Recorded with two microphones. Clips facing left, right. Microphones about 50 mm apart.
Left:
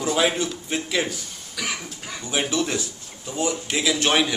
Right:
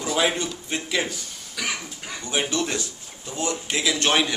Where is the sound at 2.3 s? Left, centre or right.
Centre.